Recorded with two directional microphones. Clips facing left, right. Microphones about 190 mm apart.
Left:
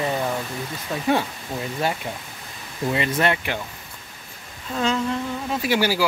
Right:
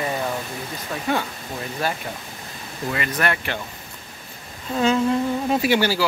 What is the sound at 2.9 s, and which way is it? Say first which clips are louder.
Speech: left 3 dB; 25° left (ahead or behind).